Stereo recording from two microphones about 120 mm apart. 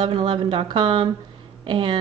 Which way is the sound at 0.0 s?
45° right (ahead or behind).